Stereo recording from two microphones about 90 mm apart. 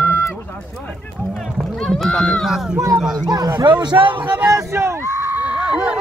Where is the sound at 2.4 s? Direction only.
5° right (ahead or behind).